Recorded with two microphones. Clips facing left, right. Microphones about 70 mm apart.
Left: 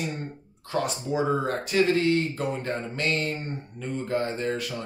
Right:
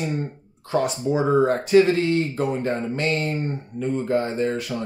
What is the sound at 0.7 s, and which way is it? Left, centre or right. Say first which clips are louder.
Speech: right 6 dB; right.